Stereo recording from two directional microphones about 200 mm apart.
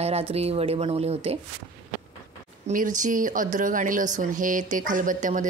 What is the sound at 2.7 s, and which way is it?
Speech, 40° right (ahead or behind).